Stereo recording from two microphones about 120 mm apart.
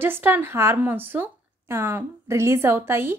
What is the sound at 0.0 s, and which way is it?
Speech, 15° right (ahead or behind).